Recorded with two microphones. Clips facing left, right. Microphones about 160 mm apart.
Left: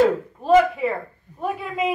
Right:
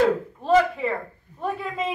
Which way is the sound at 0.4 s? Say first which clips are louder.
Left 4 dB; 5° left (ahead or behind).